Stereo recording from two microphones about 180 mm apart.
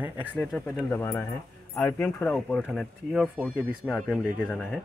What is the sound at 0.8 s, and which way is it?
Speech, 10° left (ahead or behind).